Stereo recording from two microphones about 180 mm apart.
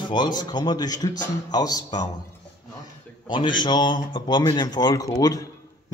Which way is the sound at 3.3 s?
25° left (ahead or behind).